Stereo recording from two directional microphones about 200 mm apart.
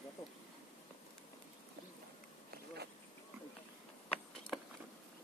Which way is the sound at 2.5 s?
55° right (ahead or behind).